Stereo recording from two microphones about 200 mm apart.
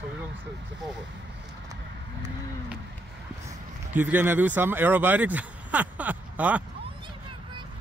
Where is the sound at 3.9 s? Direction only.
10° right (ahead or behind).